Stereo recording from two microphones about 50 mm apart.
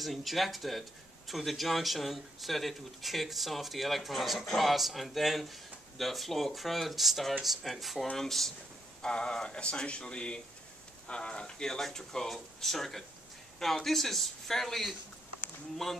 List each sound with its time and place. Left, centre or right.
0.0 s a man's voice: centre